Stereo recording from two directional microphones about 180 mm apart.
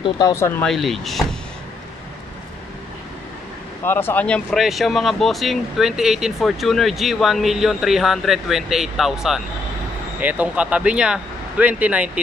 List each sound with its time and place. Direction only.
0.0 s speech: 20° left (ahead or behind)
0.7 s speech: centre (ahead or behind)
3.8 s speech: 10° left (ahead or behind); by 12.1 s 10° right (ahead or behind)